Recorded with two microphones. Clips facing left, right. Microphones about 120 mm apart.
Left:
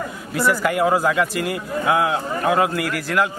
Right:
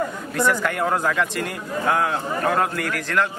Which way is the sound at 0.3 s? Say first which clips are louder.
Left 3 dB; 5° left (ahead or behind).